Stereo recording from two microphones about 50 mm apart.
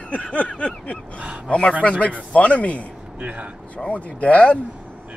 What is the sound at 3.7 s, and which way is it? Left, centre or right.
Speech, left.